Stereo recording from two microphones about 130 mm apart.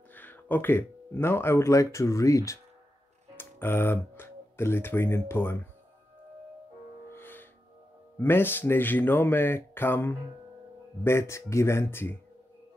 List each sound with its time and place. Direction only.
0.1 s speech: 15° left (ahead or behind)
7.1 s music: 15° left (ahead or behind)
8.2 s speech: 15° left (ahead or behind)